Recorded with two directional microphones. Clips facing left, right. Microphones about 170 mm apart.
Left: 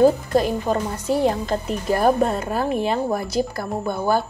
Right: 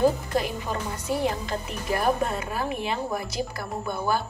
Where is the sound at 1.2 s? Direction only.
35° left (ahead or behind).